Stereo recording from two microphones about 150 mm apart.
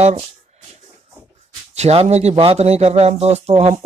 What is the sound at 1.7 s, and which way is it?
Speech, 45° right (ahead or behind).